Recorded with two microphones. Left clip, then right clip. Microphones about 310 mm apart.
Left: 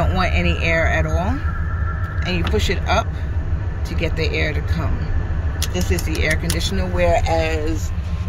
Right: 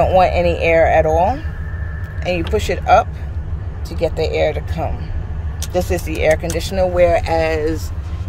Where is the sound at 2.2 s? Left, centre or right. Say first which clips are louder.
Right 4 dB; centre.